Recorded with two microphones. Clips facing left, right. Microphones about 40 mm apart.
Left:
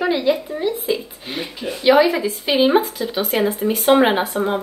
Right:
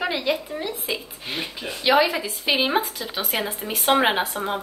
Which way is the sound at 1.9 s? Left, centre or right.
Centre.